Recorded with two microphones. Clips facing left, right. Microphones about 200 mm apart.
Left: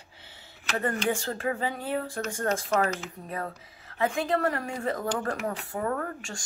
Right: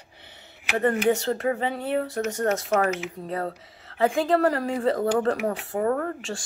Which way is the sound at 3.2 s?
35° right (ahead or behind).